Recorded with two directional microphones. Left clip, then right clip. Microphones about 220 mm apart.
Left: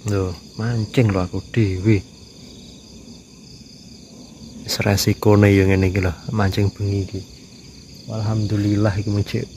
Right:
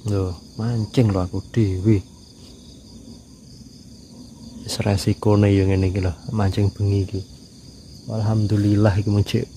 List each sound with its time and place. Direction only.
0.0 s speech: 5° right (ahead or behind)
4.6 s speech: 5° right (ahead or behind)
8.1 s speech: 25° right (ahead or behind)